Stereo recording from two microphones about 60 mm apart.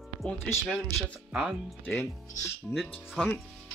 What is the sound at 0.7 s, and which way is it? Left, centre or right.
Speech, left.